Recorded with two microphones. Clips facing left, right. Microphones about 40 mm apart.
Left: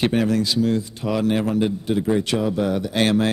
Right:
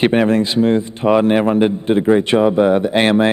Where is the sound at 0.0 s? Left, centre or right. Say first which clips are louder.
Right 6 dB; right.